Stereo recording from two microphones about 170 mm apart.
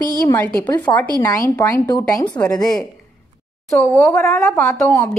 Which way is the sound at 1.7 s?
20° left (ahead or behind).